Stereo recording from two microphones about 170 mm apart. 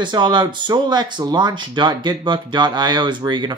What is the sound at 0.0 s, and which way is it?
Speech, 25° right (ahead or behind).